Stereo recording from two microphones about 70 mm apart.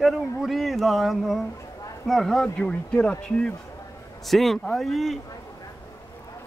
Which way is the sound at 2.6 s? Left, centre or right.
Centre.